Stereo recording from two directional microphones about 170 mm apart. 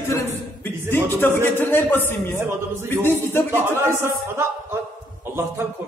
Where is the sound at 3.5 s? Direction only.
15° right (ahead or behind).